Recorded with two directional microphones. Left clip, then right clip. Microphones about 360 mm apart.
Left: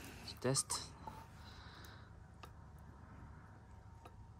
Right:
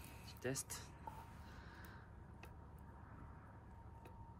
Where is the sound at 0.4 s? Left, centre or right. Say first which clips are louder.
Left 7 dB; centre.